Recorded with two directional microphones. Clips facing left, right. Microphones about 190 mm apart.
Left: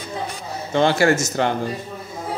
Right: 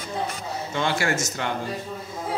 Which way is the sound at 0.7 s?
35° left (ahead or behind).